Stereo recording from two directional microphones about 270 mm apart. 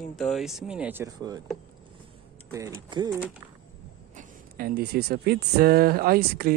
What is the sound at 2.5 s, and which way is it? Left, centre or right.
Speech, centre.